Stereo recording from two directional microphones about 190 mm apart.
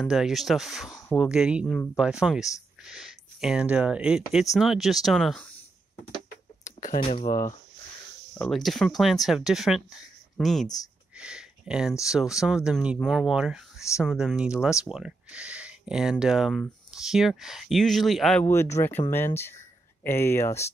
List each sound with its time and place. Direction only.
0.0 s speech: centre (ahead or behind)
7.0 s speech: 30° left (ahead or behind)
7.2 s speech: 15° left (ahead or behind)
8.4 s speech: centre (ahead or behind)
11.1 s a sound: 5° right (ahead or behind)
12.1 s speech: 5° right (ahead or behind)
18.5 s speech: 15° left (ahead or behind)